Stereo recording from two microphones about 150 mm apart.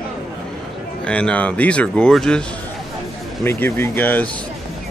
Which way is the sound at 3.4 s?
15° left (ahead or behind).